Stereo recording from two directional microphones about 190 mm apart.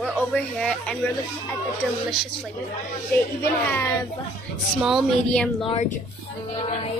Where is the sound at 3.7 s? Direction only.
15° left (ahead or behind).